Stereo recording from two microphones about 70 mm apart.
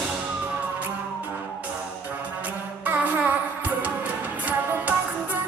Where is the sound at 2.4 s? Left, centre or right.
Right.